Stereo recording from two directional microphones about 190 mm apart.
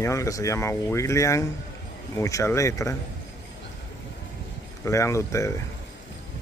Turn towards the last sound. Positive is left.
turn(degrees=15)  # may be behind; listen again after turning